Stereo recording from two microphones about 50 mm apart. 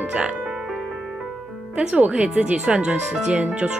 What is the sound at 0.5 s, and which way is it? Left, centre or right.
Music, centre.